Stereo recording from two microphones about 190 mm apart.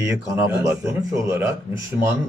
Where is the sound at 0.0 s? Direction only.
15° right (ahead or behind).